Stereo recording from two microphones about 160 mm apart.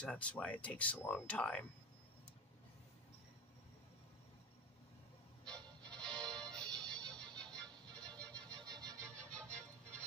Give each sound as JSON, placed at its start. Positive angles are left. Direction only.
{"t": 0.0, "sound": "speech", "side_deg": 5}
{"t": 5.4, "sound": "music", "side_deg": 5}
{"t": 8.6, "sound": "a sound", "side_deg": -25}
{"t": 9.1, "sound": "music", "side_deg": 5}